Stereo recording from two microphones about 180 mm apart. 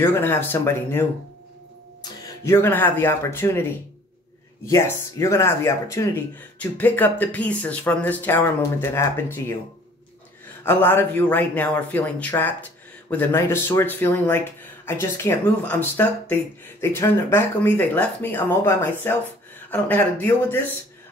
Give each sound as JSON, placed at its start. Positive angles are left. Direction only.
{"t": 0.0, "sound": "speech", "side_deg": 10}
{"t": 2.2, "sound": "speech", "side_deg": 15}
{"t": 10.6, "sound": "speech", "side_deg": 10}